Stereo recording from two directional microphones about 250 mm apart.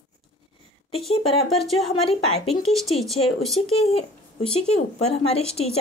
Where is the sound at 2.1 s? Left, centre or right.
Left.